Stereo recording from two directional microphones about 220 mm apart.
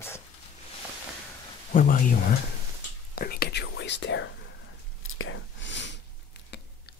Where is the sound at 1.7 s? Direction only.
35° left (ahead or behind); by 4.3 s 55° left (ahead or behind).